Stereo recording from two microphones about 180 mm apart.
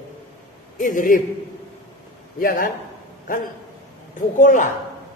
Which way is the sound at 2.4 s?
50° left (ahead or behind).